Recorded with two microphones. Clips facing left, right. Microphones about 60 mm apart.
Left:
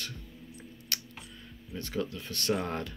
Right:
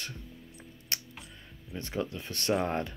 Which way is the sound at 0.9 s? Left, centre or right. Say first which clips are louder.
Even; right.